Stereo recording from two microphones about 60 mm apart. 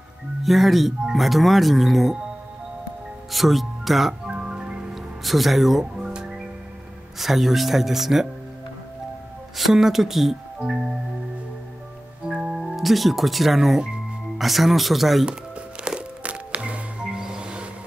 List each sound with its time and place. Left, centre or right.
0.4 s speech: centre
3.3 s speech: centre
4.3 s music: centre
4.9 s music: centre
7.2 s speech: centre
9.6 s speech: centre
12.3 s music: centre
14.4 s speech: centre
15.8 s music: centre